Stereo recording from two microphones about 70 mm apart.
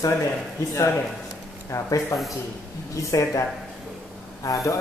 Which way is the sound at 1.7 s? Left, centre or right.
Left.